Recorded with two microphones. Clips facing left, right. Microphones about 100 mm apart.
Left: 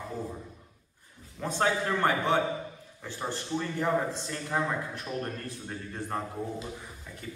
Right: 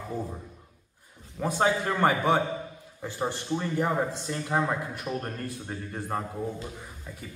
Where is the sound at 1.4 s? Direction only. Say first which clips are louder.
Right 3 dB; 10° right (ahead or behind).